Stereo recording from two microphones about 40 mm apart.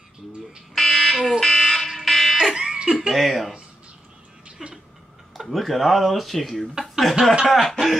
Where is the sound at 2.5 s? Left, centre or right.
Centre.